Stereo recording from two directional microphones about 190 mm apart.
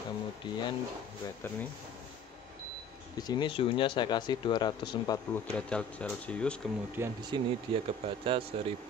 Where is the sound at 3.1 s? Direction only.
20° left (ahead or behind).